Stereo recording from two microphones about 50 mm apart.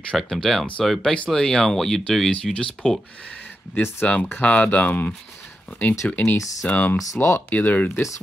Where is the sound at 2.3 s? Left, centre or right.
Centre.